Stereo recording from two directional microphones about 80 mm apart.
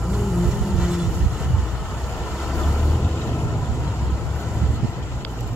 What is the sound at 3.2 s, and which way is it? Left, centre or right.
Vehicle, left.